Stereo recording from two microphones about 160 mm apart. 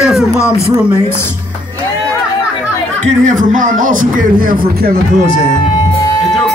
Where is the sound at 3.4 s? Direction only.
55° right (ahead or behind).